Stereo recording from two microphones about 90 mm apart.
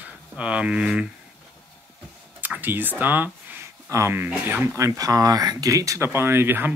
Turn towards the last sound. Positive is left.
turn(degrees=-25)  # may be behind; listen again after turning